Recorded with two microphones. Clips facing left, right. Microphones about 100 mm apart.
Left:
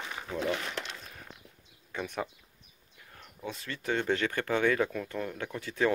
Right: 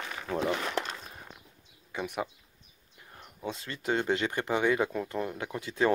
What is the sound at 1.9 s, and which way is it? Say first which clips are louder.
Speech: right 1 dB; 10° right (ahead or behind).